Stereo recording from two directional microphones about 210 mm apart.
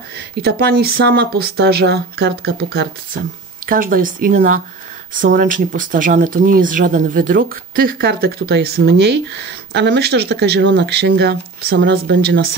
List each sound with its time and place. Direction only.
0.4 s speech: 50° right (ahead or behind)